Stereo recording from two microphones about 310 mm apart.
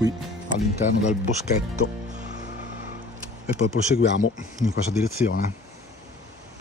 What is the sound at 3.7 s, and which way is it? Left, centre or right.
Speech, left.